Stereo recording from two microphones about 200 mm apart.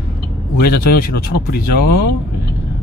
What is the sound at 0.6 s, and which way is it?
Speech, 50° left (ahead or behind).